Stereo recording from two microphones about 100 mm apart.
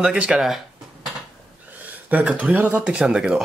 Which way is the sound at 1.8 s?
15° right (ahead or behind).